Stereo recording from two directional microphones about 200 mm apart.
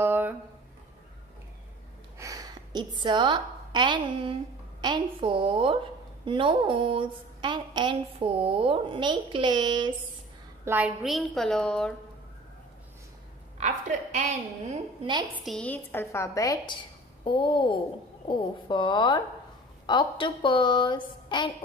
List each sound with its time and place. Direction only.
0.0 s a sound: 10° right (ahead or behind)
2.1 s a sound: 15° right (ahead or behind)
3.0 s a woman's voice: 20° right (ahead or behind)
10.6 s a woman's voice: 10° right (ahead or behind)
13.6 s a woman's voice: 40° right (ahead or behind)
15.0 s a woman's voice: 25° right (ahead or behind)
15.4 s a woman's voice: 5° left (ahead or behind); by 21.5 s 25° left (ahead or behind)